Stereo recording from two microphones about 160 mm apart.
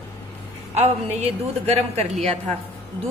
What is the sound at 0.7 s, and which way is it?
A woman's voice, 40° right (ahead or behind).